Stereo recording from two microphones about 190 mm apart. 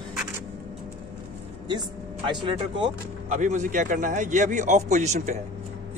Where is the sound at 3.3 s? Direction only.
40° right (ahead or behind).